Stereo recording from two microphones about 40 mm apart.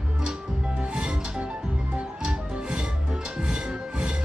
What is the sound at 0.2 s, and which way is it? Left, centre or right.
Music, centre.